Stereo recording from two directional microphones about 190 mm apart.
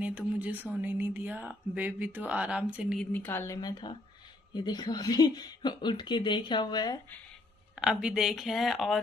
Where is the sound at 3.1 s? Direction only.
10° left (ahead or behind).